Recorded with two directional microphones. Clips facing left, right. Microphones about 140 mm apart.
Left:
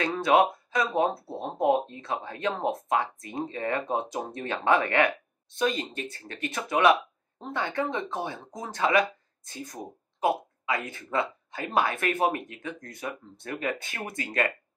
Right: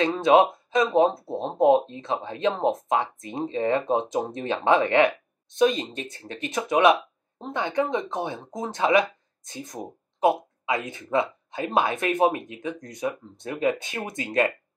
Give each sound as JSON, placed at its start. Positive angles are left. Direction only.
{"t": 0.0, "sound": "speech", "side_deg": -20}